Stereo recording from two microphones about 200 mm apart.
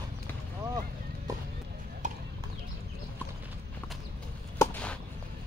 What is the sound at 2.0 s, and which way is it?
Clip-clop, 40° right (ahead or behind).